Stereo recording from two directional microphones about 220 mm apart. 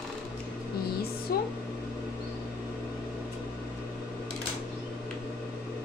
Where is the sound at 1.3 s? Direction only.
45° left (ahead or behind).